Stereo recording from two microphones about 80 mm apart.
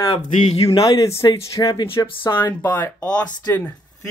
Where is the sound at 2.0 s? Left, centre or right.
Left.